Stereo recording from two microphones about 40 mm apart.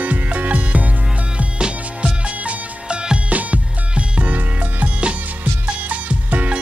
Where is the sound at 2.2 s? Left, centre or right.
Right.